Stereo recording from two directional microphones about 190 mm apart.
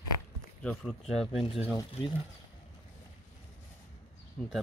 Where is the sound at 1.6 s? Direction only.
20° left (ahead or behind).